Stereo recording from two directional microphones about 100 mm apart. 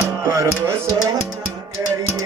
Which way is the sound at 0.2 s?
30° right (ahead or behind).